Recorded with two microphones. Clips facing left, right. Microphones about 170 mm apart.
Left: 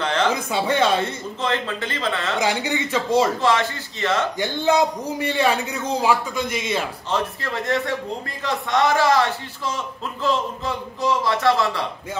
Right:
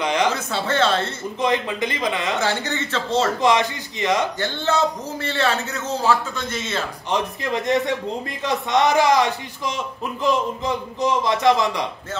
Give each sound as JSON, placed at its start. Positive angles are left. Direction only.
{"t": 0.0, "sound": "a man's voice", "side_deg": -15}
{"t": 0.3, "sound": "a man's voice", "side_deg": 15}
{"t": 1.4, "sound": "a man's voice", "side_deg": -15}
{"t": 2.4, "sound": "a man's voice", "side_deg": 15}
{"t": 3.3, "sound": "a man's voice", "side_deg": -15}
{"t": 4.4, "sound": "a man's voice", "side_deg": 15}
{"t": 7.1, "sound": "a man's voice", "side_deg": -15}